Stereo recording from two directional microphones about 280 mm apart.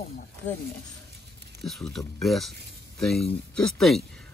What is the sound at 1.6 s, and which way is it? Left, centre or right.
A man's voice, centre.